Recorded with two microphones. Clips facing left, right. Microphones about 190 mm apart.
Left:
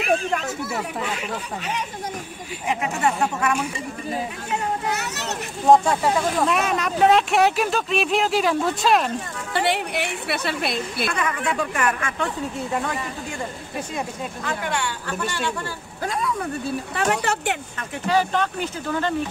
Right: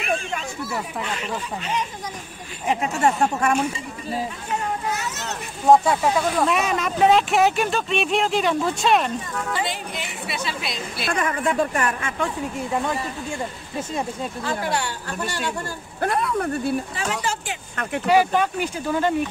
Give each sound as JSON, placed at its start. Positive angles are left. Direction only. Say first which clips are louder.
{"t": 0.0, "sound": "a sound", "louder": "left 4 dB", "side_deg": 0}
{"t": 1.6, "sound": "a woman's voice", "louder": "right 2 dB", "side_deg": 65}
{"t": 2.7, "sound": "speech", "louder": "right 2 dB", "side_deg": -35}
{"t": 4.8, "sound": "a child's voice", "louder": "left 1 dB", "side_deg": 65}
{"t": 5.7, "sound": "speech", "louder": "even", "side_deg": 0}
{"t": 9.5, "sound": "a woman's voice", "louder": "left 7 dB", "side_deg": 65}
{"t": 11.1, "sound": "speech", "louder": "right 6 dB", "side_deg": -45}
{"t": 14.4, "sound": "speech", "louder": "right 1 dB", "side_deg": -35}
{"t": 16.0, "sound": "speech", "louder": "right 3 dB", "side_deg": -60}
{"t": 16.9, "sound": "a woman's voice", "louder": "left 4 dB", "side_deg": 65}
{"t": 18.0, "sound": "speech", "louder": "right 3 dB", "side_deg": -10}